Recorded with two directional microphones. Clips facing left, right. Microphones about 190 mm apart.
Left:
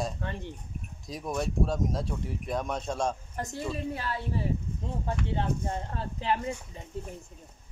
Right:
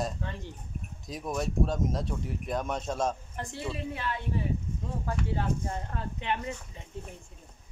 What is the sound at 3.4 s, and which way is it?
Speech, 40° left (ahead or behind).